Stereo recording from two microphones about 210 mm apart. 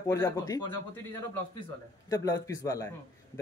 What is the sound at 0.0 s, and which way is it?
Speech, 15° left (ahead or behind).